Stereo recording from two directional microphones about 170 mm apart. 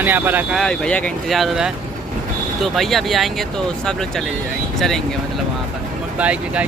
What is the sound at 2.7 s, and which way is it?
Speech, centre (ahead or behind).